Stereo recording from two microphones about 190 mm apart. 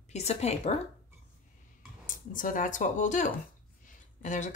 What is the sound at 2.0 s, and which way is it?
Speech, 45° left (ahead or behind).